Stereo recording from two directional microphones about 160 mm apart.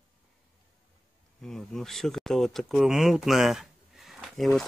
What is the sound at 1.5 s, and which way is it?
Speech, centre (ahead or behind).